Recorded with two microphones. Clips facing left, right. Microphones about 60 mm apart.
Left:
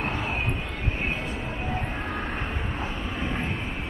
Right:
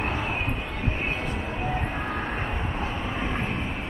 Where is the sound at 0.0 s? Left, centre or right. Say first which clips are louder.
Right 1 dB; centre.